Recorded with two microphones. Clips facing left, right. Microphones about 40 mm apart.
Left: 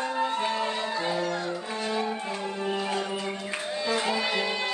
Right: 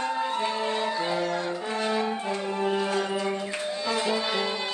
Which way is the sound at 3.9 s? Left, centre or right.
Left.